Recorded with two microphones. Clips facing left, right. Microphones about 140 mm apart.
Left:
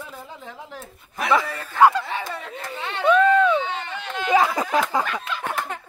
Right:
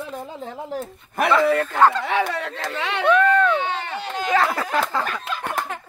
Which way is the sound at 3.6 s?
65° right (ahead or behind).